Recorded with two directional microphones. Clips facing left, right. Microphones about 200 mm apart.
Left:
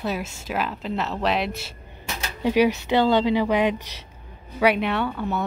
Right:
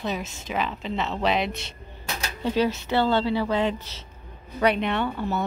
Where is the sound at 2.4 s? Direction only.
15° left (ahead or behind).